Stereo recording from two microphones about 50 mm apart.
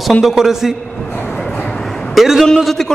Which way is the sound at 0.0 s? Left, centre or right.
Centre.